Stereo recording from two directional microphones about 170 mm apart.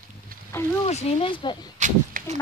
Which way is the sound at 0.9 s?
40° left (ahead or behind).